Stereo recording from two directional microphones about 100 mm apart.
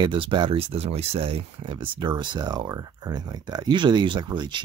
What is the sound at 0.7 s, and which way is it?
Speech, 85° right.